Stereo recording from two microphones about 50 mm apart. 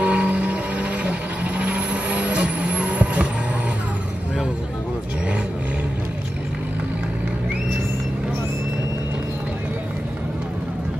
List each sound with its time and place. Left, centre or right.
0.0 s vehicle: right